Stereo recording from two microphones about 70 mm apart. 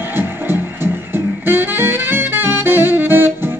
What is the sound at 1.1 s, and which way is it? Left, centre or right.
Music, right.